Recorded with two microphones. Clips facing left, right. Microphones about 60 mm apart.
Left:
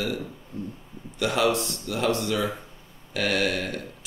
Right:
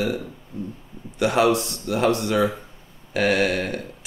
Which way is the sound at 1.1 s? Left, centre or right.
Right.